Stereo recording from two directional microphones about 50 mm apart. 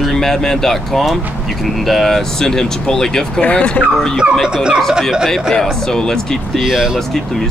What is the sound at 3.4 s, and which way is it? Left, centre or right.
Speech, left.